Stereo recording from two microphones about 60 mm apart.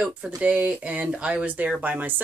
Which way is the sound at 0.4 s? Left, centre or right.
Centre.